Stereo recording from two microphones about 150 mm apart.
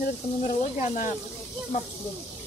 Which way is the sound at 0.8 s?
60° left (ahead or behind).